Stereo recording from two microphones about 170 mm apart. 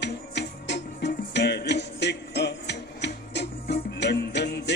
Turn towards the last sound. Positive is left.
turn(degrees=85)